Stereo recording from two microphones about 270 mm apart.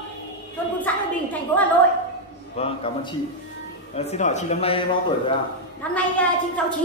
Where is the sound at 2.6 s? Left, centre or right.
Left.